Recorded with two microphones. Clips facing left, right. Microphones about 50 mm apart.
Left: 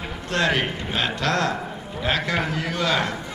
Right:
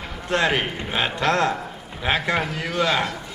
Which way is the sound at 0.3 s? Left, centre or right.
Centre.